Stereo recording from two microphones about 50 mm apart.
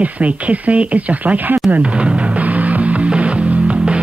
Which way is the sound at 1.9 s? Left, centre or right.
Right.